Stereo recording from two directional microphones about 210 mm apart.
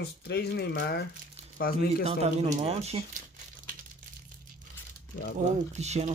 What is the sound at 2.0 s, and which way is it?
Speech, 30° right (ahead or behind).